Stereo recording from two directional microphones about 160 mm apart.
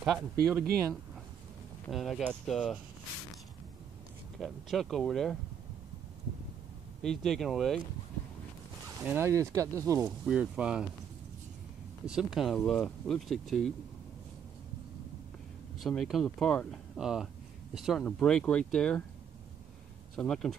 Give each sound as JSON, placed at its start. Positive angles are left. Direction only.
{"t": 0.5, "sound": "speech", "side_deg": -20}
{"t": 1.9, "sound": "speech", "side_deg": 0}
{"t": 4.4, "sound": "speech", "side_deg": 0}
{"t": 7.0, "sound": "speech", "side_deg": 5}
{"t": 8.8, "sound": "speech", "side_deg": -15}
{"t": 10.0, "sound": "speech", "side_deg": -5}
{"t": 12.1, "sound": "speech", "side_deg": -5}
{"t": 15.8, "sound": "speech", "side_deg": 0}
{"t": 20.2, "sound": "speech", "side_deg": 5}